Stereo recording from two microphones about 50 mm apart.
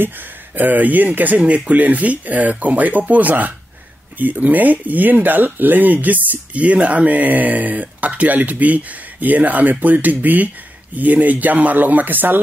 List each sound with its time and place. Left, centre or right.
0.0 s speech: right
1.4 s speech: right